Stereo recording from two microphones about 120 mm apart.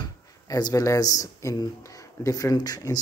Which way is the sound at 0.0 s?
35° left (ahead or behind).